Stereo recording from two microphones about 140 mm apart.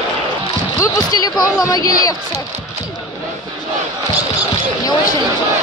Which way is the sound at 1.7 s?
25° left (ahead or behind).